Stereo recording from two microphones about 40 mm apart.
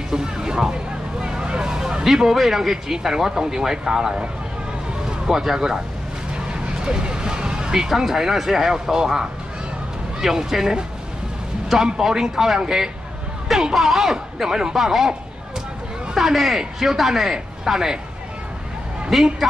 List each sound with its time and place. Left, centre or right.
0.1 s speech: centre
1.2 s vehicle: right
2.0 s speech: centre
5.2 s speech: centre
6.3 s vehicle: right
8.0 s speech: centre
16.2 s speech: centre
19.1 s speech: centre